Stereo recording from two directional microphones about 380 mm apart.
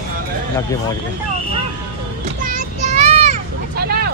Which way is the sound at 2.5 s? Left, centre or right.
Centre.